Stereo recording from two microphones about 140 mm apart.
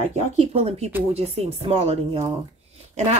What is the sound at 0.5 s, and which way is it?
Speech, 50° right (ahead or behind).